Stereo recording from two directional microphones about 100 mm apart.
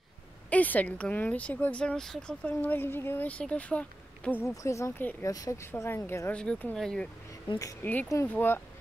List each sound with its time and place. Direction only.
0.5 s speech: 15° left (ahead or behind)
4.6 s speech: 30° left (ahead or behind)
6.3 s speech: 10° left (ahead or behind)
7.8 s speech: 15° left (ahead or behind)